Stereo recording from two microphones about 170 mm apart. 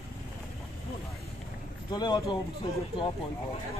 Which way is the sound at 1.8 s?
25° left (ahead or behind).